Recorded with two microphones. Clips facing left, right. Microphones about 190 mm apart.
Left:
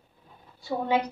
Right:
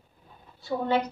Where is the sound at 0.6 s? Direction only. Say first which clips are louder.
Even; 15° left (ahead or behind).